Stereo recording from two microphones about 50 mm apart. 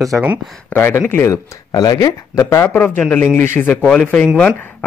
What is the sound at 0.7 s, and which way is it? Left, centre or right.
Speech, left.